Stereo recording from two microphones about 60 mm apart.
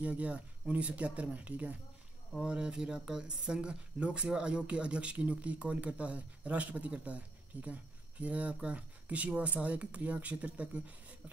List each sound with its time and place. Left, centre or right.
0.0 s speech: right